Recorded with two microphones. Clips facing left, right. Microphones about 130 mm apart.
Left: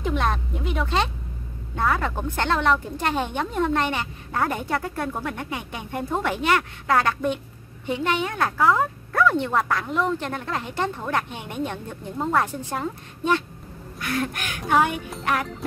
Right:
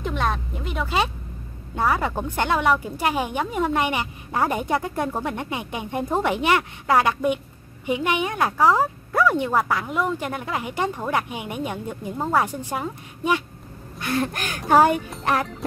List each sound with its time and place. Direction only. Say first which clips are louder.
0.0 s a sound: left 1 dB; centre (ahead or behind)
1.8 s a woman's voice: right 1 dB; 10° right (ahead or behind)
9.1 s a woman's voice: right 1 dB; 5° right (ahead or behind)
13.9 s crow: right 2 dB; 25° right (ahead or behind)
14.7 s speech: right 5 dB; 40° right (ahead or behind)